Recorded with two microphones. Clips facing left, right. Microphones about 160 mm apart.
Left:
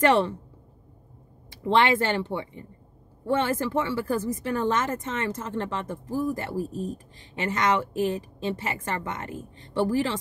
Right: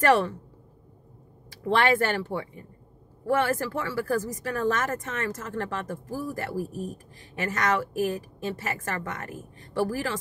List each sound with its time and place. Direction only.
0.0 s speech: 20° left (ahead or behind)
1.6 s speech: 20° left (ahead or behind)